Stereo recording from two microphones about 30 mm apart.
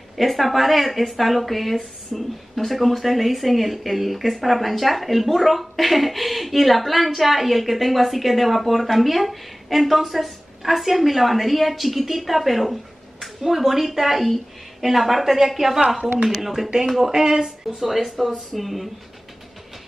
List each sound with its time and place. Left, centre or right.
0.2 s speech: centre
17.1 s speech: centre
17.7 s speech: centre